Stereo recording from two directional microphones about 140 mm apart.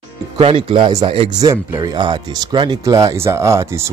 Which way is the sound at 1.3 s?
30° right (ahead or behind).